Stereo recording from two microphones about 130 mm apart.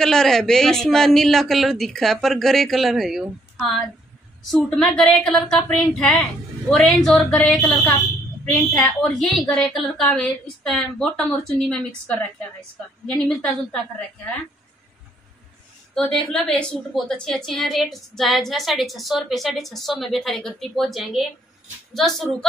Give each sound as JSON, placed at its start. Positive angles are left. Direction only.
{"t": 0.0, "sound": "a man's voice", "side_deg": 5}
{"t": 15.9, "sound": "a man's voice", "side_deg": 5}